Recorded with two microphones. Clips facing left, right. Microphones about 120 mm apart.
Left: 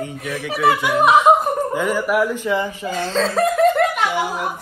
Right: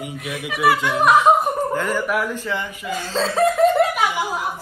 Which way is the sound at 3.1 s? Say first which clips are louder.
Even; centre (ahead or behind).